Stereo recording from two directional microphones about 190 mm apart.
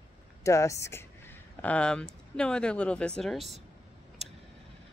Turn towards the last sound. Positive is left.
turn(degrees=0)  # may be behind; listen again after turning